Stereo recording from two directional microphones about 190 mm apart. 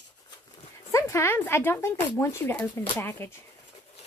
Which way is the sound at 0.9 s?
15° left (ahead or behind).